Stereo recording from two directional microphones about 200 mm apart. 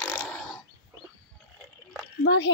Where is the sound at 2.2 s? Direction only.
60° left (ahead or behind).